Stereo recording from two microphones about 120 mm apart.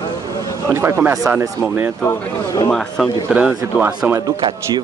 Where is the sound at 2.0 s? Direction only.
30° left (ahead or behind).